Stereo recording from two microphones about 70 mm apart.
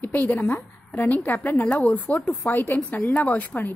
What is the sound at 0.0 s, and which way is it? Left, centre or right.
A woman's voice, left.